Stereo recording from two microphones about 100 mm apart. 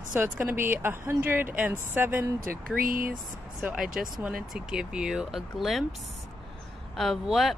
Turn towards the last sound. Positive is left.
turn(degrees=0)  # may be behind; listen again after turning